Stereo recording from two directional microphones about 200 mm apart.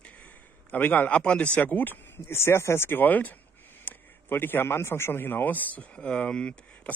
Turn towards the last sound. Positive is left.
turn(degrees=5)  # may be behind; listen again after turning